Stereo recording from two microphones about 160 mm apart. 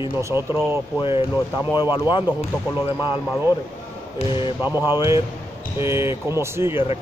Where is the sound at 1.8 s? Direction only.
30° left (ahead or behind).